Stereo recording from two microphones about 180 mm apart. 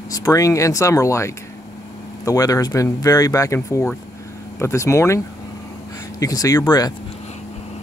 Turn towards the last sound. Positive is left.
turn(degrees=20)  # may be behind; listen again after turning